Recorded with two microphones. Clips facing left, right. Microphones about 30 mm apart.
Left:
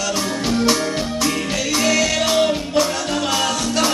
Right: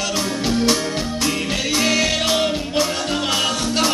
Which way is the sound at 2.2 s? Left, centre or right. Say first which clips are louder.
Left 2 dB; centre.